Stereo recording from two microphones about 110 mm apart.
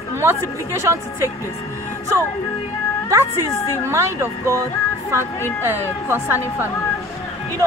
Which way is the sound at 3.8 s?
25° right (ahead or behind).